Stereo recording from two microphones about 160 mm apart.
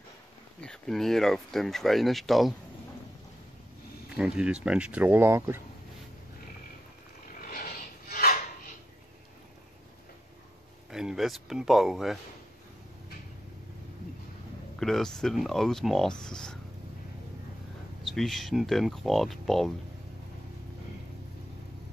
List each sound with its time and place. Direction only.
0.6 s speech: 5° left (ahead or behind)
4.1 s speech: 5° right (ahead or behind)
7.4 s a sound: 60° left (ahead or behind)
10.9 s speech: 5° right (ahead or behind)
14.8 s speech: centre (ahead or behind)
18.0 s speech: centre (ahead or behind)